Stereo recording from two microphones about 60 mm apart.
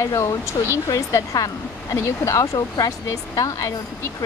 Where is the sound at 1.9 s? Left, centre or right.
Left.